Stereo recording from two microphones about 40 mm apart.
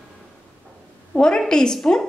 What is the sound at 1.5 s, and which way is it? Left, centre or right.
Speech, centre.